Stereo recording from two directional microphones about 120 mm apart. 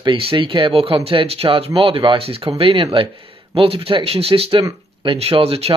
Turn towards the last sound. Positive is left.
turn(degrees=-55)  # may be behind; listen again after turning